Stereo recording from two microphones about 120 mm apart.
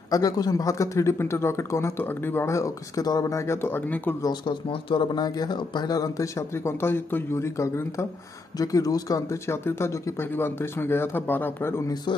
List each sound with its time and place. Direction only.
0.1 s speech: 30° left (ahead or behind)
4.2 s speech: 40° left (ahead or behind); by 11.8 s 20° left (ahead or behind)